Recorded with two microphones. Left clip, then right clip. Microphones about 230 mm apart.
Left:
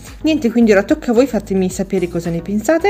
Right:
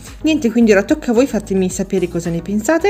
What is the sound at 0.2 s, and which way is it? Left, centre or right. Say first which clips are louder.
Speech: even; centre.